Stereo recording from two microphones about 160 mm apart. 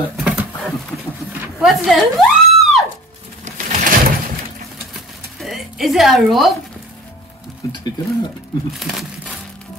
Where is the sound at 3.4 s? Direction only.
50° right (ahead or behind).